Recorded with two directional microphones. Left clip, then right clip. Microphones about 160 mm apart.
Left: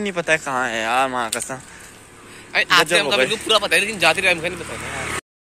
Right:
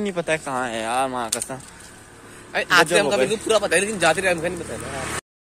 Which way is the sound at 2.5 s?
55° right (ahead or behind).